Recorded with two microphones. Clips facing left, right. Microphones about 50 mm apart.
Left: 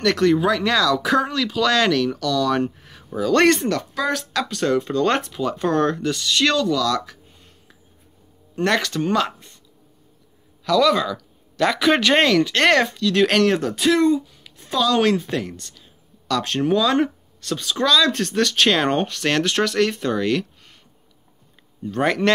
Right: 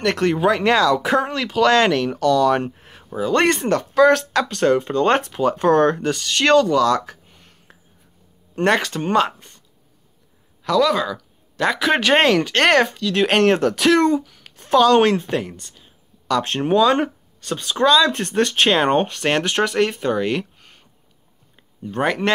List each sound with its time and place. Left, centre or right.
0.0 s speech: right
3.6 s speech: right
8.6 s speech: right
10.8 s speech: centre
13.4 s speech: right
13.7 s speech: right
14.6 s speech: right
15.4 s speech: right
21.9 s a man's voice: centre